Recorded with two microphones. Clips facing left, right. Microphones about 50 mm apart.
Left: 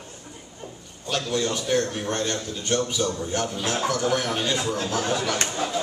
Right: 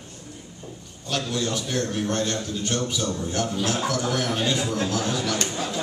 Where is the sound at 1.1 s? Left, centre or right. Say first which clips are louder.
Left 1 dB; centre.